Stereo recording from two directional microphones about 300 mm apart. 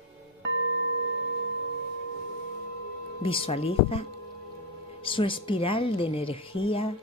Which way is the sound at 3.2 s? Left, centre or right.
Centre.